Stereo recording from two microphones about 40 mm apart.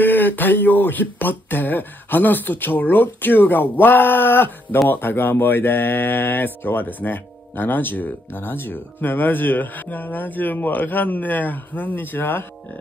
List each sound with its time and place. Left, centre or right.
0.0 s speech: left